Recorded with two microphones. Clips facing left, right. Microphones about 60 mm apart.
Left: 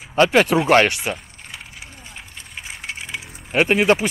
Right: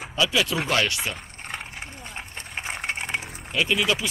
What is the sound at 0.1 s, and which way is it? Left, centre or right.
Speech, left.